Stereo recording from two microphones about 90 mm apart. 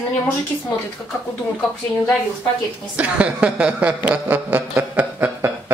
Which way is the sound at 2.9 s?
15° right (ahead or behind).